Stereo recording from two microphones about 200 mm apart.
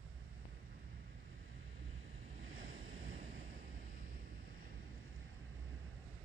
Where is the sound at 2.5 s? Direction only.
40° right (ahead or behind).